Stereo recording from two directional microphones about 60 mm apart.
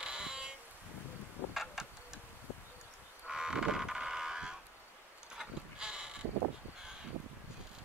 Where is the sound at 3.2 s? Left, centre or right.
Centre.